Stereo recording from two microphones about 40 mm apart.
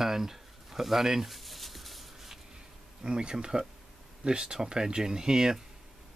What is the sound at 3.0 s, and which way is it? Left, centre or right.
Speech, right.